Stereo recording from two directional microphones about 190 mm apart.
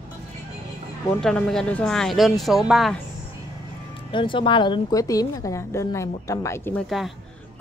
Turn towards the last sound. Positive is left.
turn(degrees=10)  # may be behind; listen again after turning